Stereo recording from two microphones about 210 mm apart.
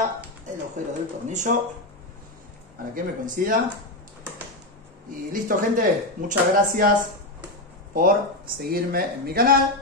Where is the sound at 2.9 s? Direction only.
40° right (ahead or behind).